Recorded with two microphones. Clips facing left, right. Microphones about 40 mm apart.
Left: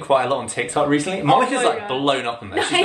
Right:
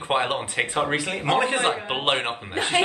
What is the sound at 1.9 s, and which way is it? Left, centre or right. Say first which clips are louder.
Speech: left 4 dB; right.